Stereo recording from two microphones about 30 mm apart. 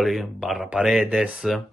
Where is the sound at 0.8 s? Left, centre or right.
Centre.